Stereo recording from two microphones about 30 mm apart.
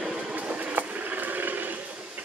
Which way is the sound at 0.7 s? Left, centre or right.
Right.